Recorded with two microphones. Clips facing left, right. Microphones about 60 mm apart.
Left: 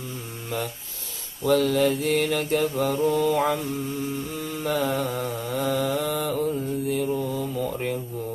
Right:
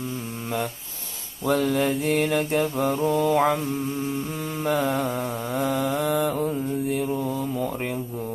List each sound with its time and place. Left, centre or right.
1.4 s mantra: right
5.5 s mantra: centre